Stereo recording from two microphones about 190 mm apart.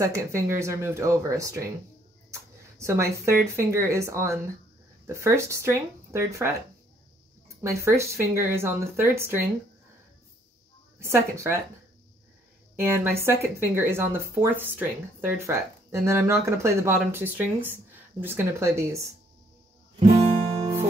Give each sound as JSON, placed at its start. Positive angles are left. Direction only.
{"t": 0.0, "sound": "speech", "side_deg": -15}
{"t": 7.6, "sound": "speech", "side_deg": -15}
{"t": 11.0, "sound": "speech", "side_deg": -15}
{"t": 12.7, "sound": "speech", "side_deg": -15}
{"t": 20.0, "sound": "guitar", "side_deg": -30}